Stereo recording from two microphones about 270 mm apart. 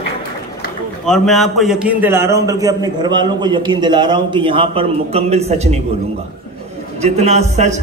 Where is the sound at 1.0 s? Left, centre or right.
Centre; by 5.8 s right.